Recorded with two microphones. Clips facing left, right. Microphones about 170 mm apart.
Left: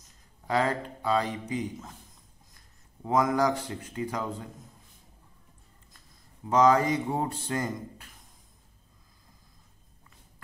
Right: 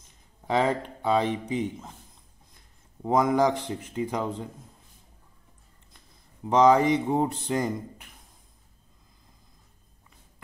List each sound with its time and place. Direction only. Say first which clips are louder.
0.5 s speech: right 3 dB; 20° right (ahead or behind)
3.0 s speech: right 3 dB; 20° right (ahead or behind)
6.5 s speech: right 3 dB; 20° right (ahead or behind)